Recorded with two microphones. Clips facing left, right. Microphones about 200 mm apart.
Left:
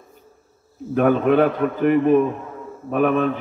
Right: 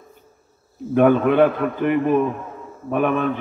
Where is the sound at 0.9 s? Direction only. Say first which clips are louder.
Right 1 dB; 40° left (ahead or behind).